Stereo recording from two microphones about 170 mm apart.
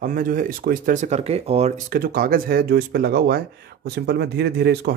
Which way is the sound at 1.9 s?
60° right (ahead or behind).